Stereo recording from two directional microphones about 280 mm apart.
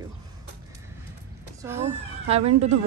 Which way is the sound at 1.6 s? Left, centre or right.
Centre.